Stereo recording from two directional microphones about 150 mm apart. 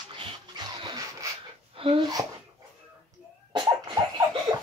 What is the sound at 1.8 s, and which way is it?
Speech, 35° right (ahead or behind).